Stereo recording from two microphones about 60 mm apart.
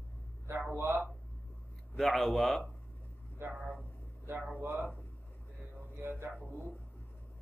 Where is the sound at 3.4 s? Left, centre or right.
Right.